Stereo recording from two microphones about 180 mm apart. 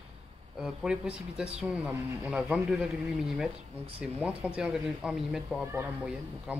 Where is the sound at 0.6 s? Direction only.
5° right (ahead or behind).